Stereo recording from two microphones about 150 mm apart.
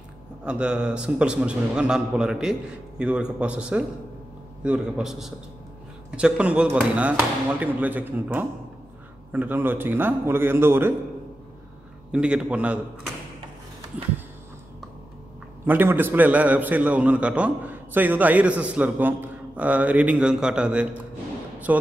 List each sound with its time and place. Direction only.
0.5 s a man's voice: 5° right (ahead or behind)
12.1 s a man's voice: 5° right (ahead or behind)
15.6 s a man's voice: 15° right (ahead or behind)